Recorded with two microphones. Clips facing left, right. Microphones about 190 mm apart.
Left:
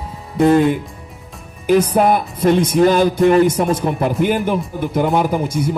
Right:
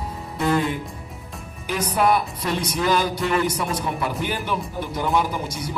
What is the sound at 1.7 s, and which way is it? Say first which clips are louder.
Music: left 7 dB; 50° left (ahead or behind).